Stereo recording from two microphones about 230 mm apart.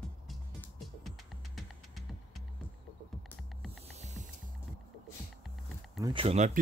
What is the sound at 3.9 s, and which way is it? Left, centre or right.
Mechanisms, right.